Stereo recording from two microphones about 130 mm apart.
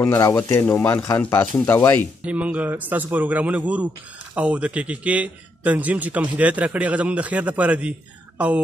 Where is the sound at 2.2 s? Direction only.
10° right (ahead or behind).